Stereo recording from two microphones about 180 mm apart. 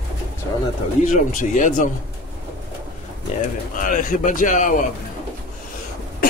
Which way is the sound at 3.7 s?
50° left (ahead or behind).